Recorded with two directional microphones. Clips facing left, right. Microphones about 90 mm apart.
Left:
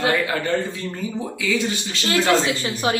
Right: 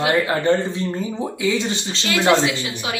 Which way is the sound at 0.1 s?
30° right (ahead or behind).